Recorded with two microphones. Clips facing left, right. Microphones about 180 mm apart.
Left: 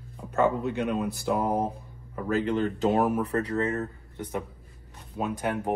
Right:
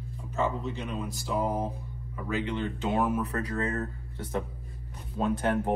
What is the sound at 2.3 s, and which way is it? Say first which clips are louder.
Speech: left 5 dB; 40° left (ahead or behind).